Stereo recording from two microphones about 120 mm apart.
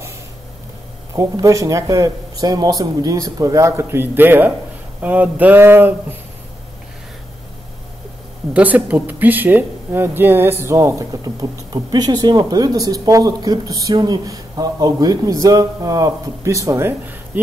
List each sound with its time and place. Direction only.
1.1 s speech: 30° right (ahead or behind)
8.5 s speech: 10° right (ahead or behind)